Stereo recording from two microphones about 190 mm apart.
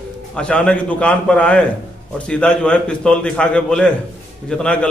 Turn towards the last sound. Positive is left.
turn(degrees=5)  # may be behind; listen again after turning